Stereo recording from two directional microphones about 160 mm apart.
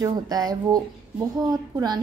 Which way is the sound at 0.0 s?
25° right (ahead or behind).